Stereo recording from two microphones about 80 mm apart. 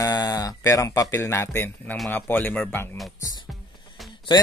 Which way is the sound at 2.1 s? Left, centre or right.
Centre.